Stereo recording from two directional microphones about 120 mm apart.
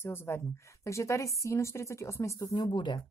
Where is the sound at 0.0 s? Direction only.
20° left (ahead or behind).